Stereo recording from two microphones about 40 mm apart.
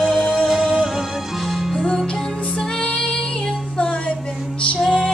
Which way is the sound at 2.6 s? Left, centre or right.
Left.